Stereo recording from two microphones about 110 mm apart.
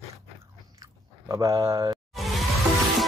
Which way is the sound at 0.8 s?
30° right (ahead or behind).